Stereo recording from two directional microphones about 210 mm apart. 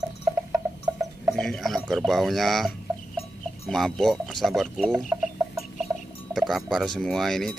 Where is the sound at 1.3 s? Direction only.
5° left (ahead or behind).